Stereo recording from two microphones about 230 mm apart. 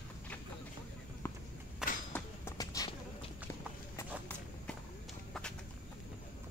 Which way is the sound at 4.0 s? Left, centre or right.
Centre.